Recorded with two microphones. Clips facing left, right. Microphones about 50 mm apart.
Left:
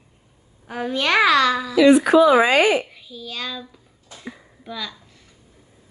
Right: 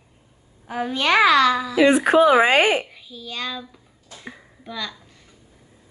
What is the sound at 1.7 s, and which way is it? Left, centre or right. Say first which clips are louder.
Speech: left 3 dB; right.